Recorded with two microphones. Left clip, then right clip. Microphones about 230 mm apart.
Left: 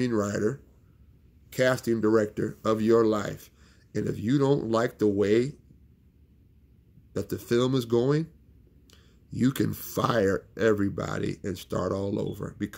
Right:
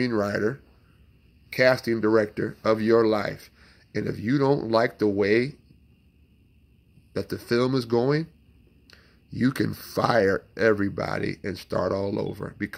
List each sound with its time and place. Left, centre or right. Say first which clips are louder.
0.0 s speech: right 2 dB; centre
1.9 s speech: right 2 dB; centre
7.1 s speech: right 2 dB; centre